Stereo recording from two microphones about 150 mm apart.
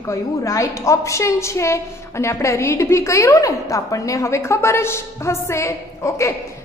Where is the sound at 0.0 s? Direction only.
20° left (ahead or behind).